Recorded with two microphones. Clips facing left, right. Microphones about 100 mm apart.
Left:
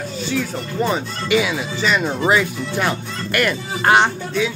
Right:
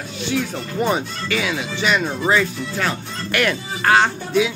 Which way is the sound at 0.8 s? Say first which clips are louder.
Even; 10° right (ahead or behind).